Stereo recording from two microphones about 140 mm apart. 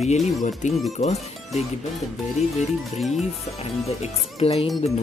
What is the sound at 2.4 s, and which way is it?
Speech, 55° left (ahead or behind).